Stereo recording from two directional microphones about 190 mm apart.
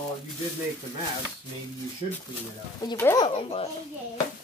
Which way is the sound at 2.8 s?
20° left (ahead or behind).